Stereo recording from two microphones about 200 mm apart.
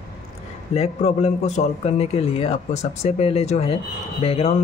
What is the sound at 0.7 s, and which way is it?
A man's voice, 30° left (ahead or behind).